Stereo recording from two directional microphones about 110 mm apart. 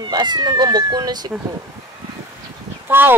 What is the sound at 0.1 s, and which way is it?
Speech, 40° right (ahead or behind).